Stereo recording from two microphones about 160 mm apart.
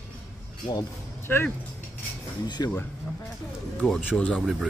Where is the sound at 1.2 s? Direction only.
15° left (ahead or behind).